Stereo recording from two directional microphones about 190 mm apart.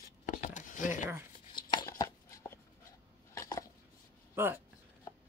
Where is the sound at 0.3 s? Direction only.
40° left (ahead or behind).